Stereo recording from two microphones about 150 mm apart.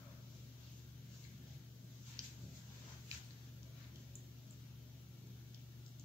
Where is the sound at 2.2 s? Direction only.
20° right (ahead or behind).